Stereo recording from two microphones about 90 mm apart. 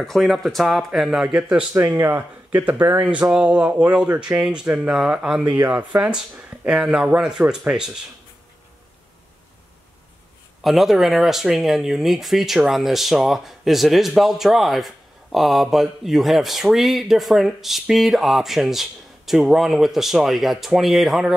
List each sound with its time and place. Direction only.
0.0 s speech: centre (ahead or behind)
1.7 s speech: 25° right (ahead or behind); by 7.9 s 10° right (ahead or behind)
10.6 s speech: centre (ahead or behind)